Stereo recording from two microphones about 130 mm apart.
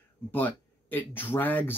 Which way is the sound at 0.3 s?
15° left (ahead or behind).